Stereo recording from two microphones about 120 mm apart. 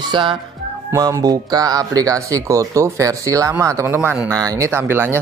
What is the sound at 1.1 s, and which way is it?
Speech, 30° right (ahead or behind).